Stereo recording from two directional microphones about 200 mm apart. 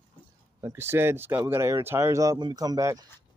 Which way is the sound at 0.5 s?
15° right (ahead or behind).